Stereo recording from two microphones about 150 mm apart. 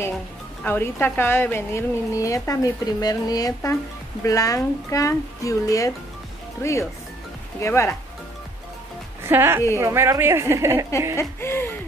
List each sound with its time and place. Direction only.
0.7 s a woman's voice: 15° left (ahead or behind)
9.3 s a woman's voice: 15° right (ahead or behind)
11.1 s speech: 15° left (ahead or behind)